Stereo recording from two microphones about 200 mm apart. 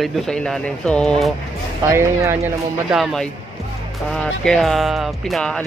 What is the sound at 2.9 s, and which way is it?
Speech, centre (ahead or behind).